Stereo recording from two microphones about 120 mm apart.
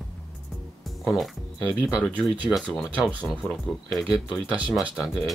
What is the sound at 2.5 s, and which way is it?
Speech, centre (ahead or behind).